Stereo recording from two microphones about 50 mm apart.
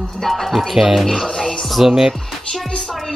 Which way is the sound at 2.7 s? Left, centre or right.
Centre.